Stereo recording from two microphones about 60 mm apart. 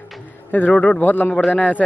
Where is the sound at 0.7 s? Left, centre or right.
Centre.